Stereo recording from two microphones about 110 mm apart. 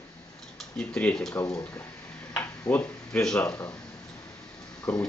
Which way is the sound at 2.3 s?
15° left (ahead or behind).